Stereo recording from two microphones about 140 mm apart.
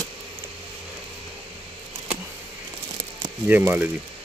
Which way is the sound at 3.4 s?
10° right (ahead or behind).